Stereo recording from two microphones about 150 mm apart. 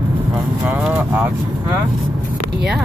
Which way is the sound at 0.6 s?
5° right (ahead or behind).